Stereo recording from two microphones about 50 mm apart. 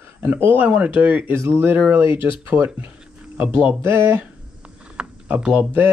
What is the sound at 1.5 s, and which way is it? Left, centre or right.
Speech, right.